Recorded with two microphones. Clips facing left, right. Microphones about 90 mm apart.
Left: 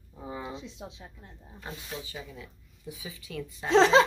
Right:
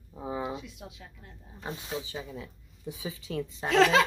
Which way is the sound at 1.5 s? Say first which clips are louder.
Right 4 dB; 25° right (ahead or behind).